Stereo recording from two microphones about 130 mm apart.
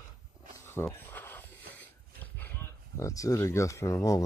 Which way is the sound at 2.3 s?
15° left (ahead or behind).